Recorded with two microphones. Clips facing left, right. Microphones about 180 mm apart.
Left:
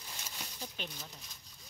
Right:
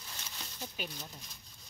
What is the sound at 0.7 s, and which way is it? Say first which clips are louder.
Speech: right 2 dB; 5° right (ahead or behind).